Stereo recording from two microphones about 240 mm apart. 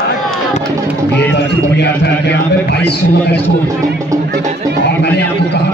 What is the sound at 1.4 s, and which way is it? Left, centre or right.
A man's voice, left.